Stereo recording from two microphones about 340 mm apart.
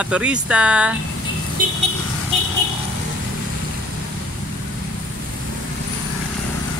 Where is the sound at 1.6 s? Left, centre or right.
Right.